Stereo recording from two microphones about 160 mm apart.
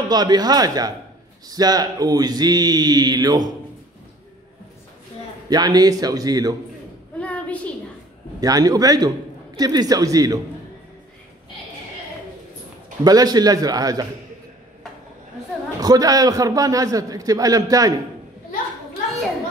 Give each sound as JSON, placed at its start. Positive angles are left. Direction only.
{"t": 0.1, "sound": "a man's voice", "side_deg": -25}
{"t": 5.5, "sound": "a man's voice", "side_deg": -25}
{"t": 7.2, "sound": "a sound", "side_deg": 10}
{"t": 8.4, "sound": "a man's voice", "side_deg": -25}
{"t": 13.0, "sound": "a man's voice", "side_deg": -25}
{"t": 15.8, "sound": "a man's voice", "side_deg": -25}